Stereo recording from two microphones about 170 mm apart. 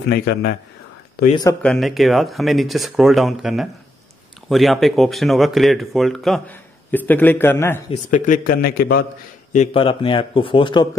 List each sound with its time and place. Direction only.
0.1 s a man's voice: 75° left (ahead or behind)
1.3 s speech: 20° left (ahead or behind)
1.6 s speech: centre (ahead or behind)
7.9 s a man's voice: 50° left (ahead or behind)
9.8 s speech: 30° left (ahead or behind)